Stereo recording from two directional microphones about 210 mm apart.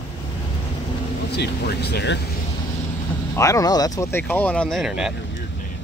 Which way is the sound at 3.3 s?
15° left (ahead or behind).